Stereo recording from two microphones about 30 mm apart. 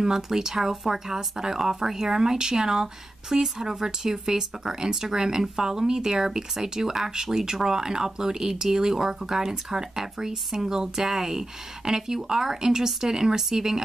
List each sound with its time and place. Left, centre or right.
0.0 s speech: centre